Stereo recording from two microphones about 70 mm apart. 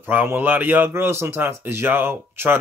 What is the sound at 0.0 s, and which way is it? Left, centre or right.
Speech, right.